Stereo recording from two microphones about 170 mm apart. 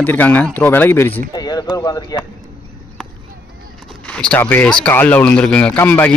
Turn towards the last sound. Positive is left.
turn(degrees=10)  # may be behind; listen again after turning